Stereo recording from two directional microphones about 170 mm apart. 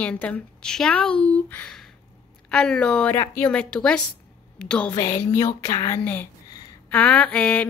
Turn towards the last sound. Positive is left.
turn(degrees=10)  # may be behind; listen again after turning